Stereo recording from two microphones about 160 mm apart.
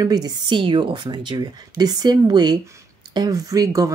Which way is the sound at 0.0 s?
25° right (ahead or behind).